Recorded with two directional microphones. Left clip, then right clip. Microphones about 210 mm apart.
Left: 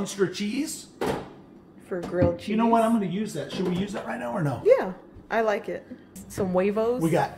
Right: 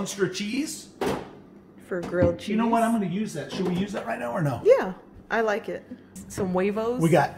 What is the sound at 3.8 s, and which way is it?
Speech, 15° right (ahead or behind).